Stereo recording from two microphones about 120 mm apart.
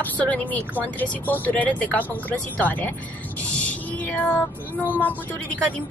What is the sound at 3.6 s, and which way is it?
Music, 15° left (ahead or behind).